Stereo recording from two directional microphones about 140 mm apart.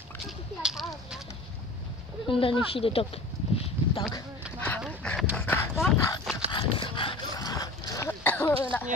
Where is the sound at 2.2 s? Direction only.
40° left (ahead or behind).